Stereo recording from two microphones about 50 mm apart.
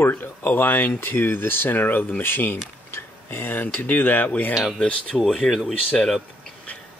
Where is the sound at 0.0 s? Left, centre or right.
Left.